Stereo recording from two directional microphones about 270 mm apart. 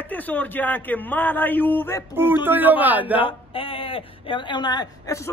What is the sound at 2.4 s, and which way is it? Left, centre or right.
Speech, centre.